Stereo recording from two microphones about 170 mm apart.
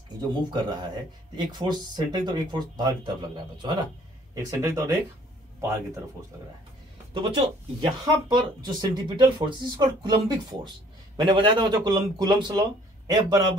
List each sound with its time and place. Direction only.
0.2 s speech: 25° right (ahead or behind)
7.2 s speech: 30° right (ahead or behind)